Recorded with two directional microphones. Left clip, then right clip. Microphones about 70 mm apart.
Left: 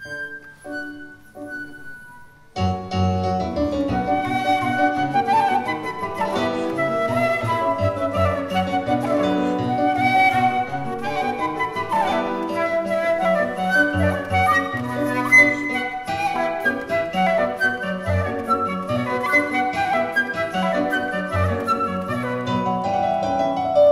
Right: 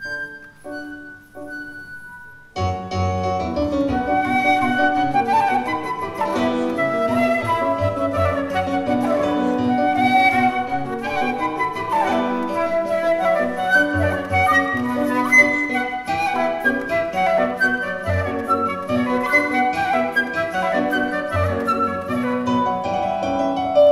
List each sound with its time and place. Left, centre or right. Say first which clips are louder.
2.6 s music: right 1 dB; left
4.0 s flute: right 4 dB; centre
6.2 s music: right 2 dB; left
6.6 s music: right 2 dB; centre
9.6 s music: right 2 dB; left
9.8 s music: right 1 dB; centre
11.1 s flute: right 1 dB; centre
16.2 s music: right 1 dB; centre
17.2 s flute: right 1 dB; centre
19.0 s music: right 1 dB; centre
19.8 s flute: right 1 dB; centre
20.3 s music: right 2 dB; centre
22.4 s music: right 2 dB; left